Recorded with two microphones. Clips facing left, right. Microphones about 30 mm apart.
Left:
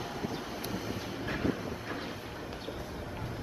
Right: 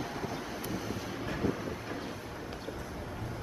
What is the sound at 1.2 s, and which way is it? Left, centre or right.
Train, centre.